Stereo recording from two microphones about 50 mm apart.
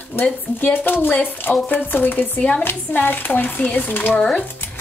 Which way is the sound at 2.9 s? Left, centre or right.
Left.